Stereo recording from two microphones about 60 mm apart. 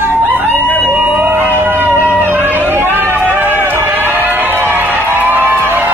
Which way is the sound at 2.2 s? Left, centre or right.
Right.